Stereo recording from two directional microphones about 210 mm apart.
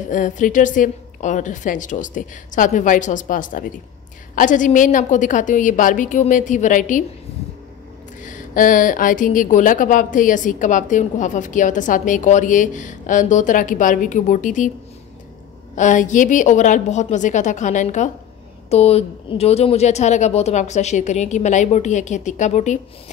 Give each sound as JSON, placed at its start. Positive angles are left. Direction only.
{"t": 0.1, "sound": "speech", "side_deg": 35}
{"t": 8.2, "sound": "speech", "side_deg": 40}
{"t": 15.7, "sound": "speech", "side_deg": 35}